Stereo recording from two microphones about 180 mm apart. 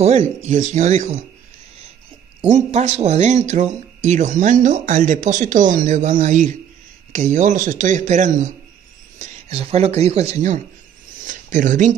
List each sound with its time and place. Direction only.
0.0 s speech: 40° right (ahead or behind)
2.4 s speech: 40° right (ahead or behind)
9.2 s speech: 35° right (ahead or behind)